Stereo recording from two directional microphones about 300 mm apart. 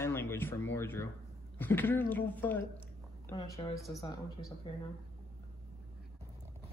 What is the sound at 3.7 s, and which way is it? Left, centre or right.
Speech, centre.